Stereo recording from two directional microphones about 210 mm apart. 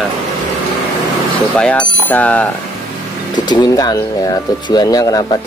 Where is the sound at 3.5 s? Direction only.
20° left (ahead or behind).